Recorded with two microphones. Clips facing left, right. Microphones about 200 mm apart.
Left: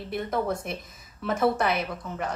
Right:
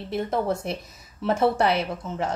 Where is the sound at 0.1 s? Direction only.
30° right (ahead or behind).